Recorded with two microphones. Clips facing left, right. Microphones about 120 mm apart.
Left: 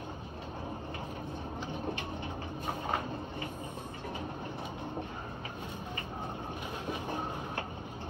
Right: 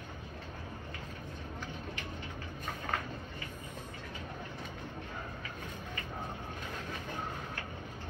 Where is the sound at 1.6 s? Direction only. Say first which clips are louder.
Left 8 dB; 20° left (ahead or behind).